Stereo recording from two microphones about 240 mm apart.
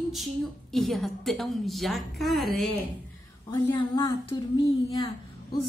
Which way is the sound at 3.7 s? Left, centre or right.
Centre.